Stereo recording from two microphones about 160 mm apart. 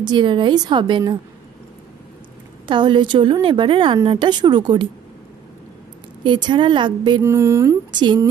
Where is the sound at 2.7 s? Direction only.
30° right (ahead or behind).